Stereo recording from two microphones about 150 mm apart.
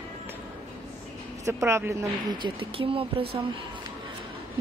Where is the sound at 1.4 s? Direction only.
20° right (ahead or behind).